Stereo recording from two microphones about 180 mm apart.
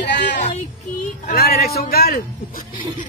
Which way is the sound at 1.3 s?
55° left (ahead or behind).